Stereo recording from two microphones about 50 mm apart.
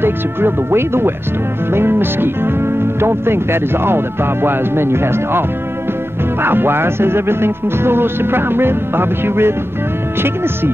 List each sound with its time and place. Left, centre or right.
0.0 s speech: right
6.4 s speech: right